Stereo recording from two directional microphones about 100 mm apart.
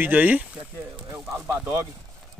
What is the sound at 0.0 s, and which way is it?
Speech, 15° right (ahead or behind).